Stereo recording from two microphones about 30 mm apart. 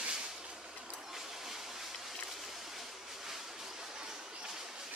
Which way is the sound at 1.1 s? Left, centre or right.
Centre.